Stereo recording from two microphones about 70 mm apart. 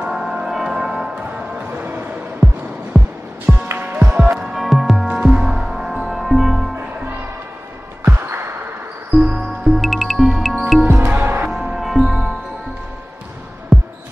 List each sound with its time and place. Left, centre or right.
0.1 s music: centre
1.2 s music: centre
4.4 s music: centre
9.1 s music: centre
10.9 s music: right
11.5 s music: centre
13.7 s basketball bounce: centre